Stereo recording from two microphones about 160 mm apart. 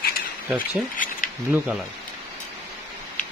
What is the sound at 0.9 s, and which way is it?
Speech, 55° left (ahead or behind).